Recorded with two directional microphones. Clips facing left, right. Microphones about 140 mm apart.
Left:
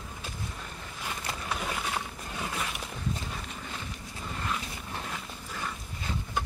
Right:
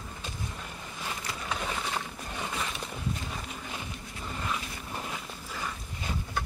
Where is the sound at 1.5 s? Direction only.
5° left (ahead or behind).